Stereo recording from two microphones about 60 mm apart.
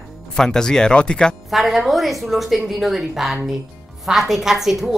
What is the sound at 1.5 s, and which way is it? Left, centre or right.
A woman's voice, centre.